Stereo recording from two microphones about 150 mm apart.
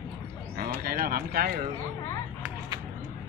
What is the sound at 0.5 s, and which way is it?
Speech, 90° right.